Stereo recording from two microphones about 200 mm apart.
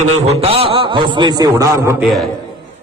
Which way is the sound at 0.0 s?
30° right (ahead or behind).